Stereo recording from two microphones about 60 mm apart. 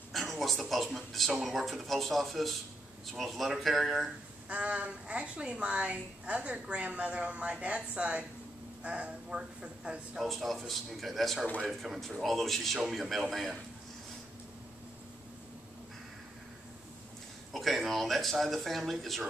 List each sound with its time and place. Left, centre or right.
0.1 s a sound: centre
0.9 s speech: centre
4.5 s a woman's voice: right
10.2 s speech: centre
17.5 s speech: centre